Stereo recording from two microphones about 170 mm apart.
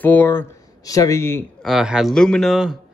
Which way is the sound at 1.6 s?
Centre (ahead or behind).